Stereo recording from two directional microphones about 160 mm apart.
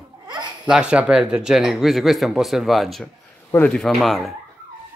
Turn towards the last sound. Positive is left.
turn(degrees=0)  # may be behind; listen again after turning